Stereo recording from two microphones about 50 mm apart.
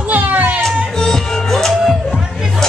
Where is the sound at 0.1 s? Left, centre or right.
Right.